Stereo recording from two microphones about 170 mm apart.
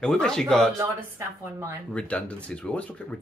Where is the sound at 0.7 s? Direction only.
15° right (ahead or behind).